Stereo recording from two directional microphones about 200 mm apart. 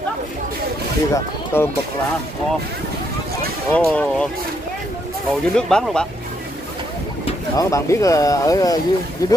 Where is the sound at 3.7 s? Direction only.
5° left (ahead or behind).